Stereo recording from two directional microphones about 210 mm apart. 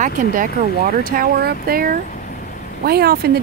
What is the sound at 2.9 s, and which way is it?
Speech, 45° right (ahead or behind).